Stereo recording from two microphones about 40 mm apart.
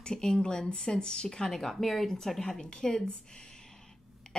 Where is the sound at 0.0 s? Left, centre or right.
Centre.